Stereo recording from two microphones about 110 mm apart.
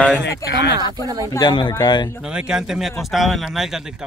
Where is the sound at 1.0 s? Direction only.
35° right (ahead or behind).